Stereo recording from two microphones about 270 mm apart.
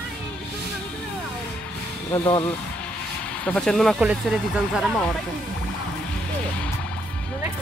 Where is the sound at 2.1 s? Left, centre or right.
Centre.